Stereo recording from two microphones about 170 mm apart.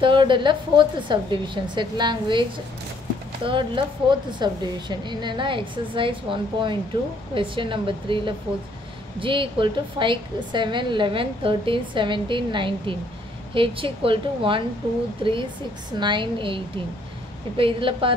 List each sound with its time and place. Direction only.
0.0 s a woman's voice: 30° right (ahead or behind)
3.4 s a woman's voice: 30° right (ahead or behind)
16.0 s a woman's voice: 30° right (ahead or behind)